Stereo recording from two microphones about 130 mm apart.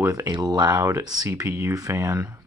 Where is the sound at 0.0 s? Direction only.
30° right (ahead or behind).